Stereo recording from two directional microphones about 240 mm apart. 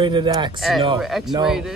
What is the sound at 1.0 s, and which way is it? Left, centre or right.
Speech, centre.